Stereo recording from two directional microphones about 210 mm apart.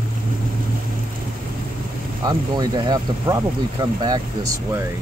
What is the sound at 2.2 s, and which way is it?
Speech, 20° right (ahead or behind).